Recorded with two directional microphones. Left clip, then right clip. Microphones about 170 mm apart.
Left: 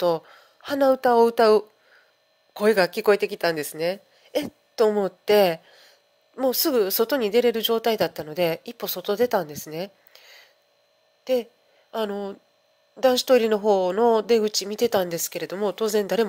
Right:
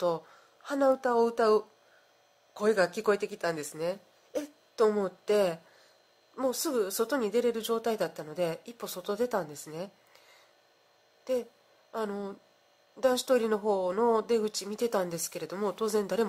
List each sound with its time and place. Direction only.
0.0 s a woman's voice: 20° left (ahead or behind)